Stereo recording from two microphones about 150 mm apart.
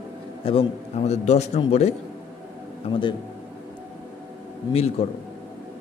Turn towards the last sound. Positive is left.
turn(degrees=40)  # may be behind; listen again after turning